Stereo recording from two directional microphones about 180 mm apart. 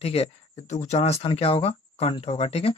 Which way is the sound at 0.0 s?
35° left (ahead or behind).